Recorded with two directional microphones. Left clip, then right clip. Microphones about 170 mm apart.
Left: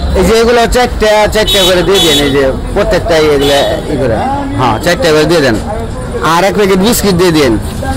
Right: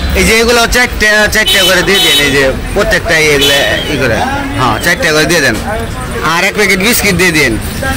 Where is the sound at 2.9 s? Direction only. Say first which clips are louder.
Even; 10° left (ahead or behind).